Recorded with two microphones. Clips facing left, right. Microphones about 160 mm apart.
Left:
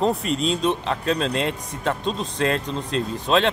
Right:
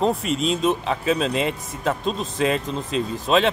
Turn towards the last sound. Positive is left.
turn(degrees=0)  # may be behind; listen again after turning